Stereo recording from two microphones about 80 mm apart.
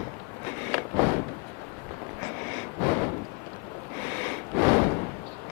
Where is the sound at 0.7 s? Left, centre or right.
Left.